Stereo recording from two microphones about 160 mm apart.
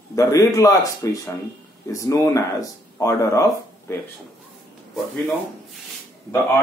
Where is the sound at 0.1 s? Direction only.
20° left (ahead or behind).